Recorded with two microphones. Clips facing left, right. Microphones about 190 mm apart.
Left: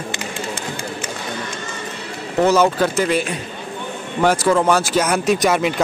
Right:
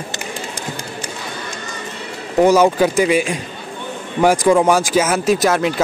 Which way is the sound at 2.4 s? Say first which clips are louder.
Right 3 dB; 10° right (ahead or behind).